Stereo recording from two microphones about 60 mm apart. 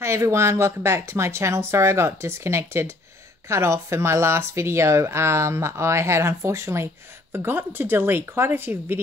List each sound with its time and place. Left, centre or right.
0.0 s speech: right
7.3 s speech: right